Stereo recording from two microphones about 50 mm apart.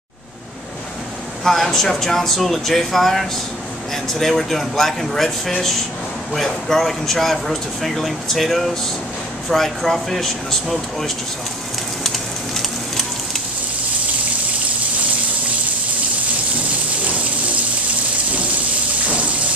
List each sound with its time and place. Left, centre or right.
1.4 s speech: centre
6.3 s speech: centre
12.0 s a sound: centre
19.0 s water: right